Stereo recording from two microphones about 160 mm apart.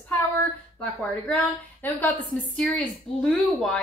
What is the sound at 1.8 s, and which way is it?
A woman's voice, 10° left (ahead or behind).